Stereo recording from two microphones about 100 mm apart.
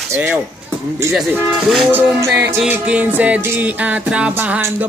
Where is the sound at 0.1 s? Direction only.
20° right (ahead or behind).